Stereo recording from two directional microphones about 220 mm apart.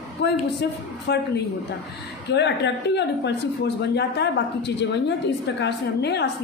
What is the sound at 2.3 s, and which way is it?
A woman's voice, 50° left (ahead or behind).